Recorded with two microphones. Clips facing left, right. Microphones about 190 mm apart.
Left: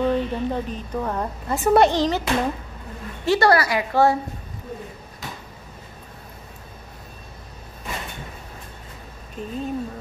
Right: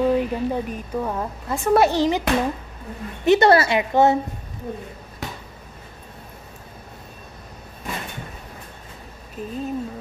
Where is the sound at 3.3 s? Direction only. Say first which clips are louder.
Right 3 dB; 25° right (ahead or behind).